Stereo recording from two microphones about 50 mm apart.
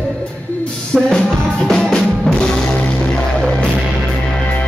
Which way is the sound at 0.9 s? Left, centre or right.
Centre.